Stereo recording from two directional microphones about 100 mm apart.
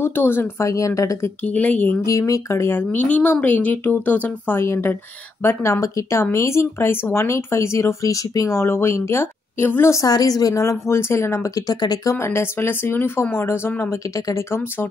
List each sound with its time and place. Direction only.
0.0 s speech: 20° left (ahead or behind)
1.4 s speech: 15° left (ahead or behind)
2.0 s speech: 30° left (ahead or behind)